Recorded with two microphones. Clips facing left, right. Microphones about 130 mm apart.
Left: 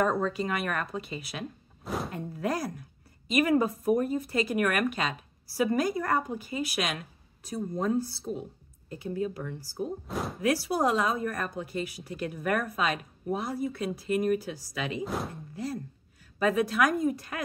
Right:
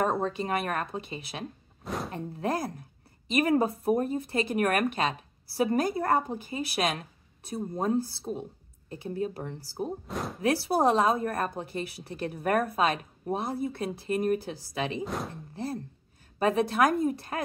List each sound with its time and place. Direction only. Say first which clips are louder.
0.2 s speech: even; 35° right (ahead or behind)
10.0 s speech: left 1 dB; centre (ahead or behind)
10.4 s speech: right 2 dB; 30° right (ahead or behind)
15.0 s speech: left 1 dB; centre (ahead or behind)
15.5 s speech: right 1 dB; 30° right (ahead or behind)